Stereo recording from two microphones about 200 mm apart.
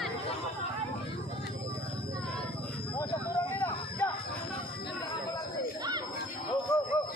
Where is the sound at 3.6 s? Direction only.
10° left (ahead or behind).